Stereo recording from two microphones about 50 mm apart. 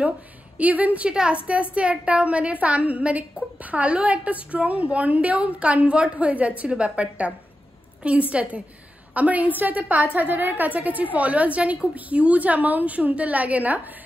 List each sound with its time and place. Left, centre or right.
0.6 s a woman's voice: right
1.0 s a woman's voice: right